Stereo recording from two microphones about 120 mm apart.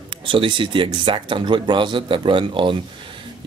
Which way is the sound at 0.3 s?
45° right (ahead or behind).